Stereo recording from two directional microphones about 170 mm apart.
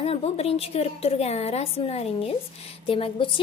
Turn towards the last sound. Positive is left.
turn(degrees=30)  # may be behind; listen again after turning